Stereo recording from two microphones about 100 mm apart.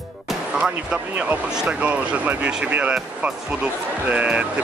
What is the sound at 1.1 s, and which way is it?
Speech, 20° right (ahead or behind).